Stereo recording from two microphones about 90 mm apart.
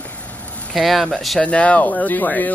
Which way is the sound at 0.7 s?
Centre (ahead or behind).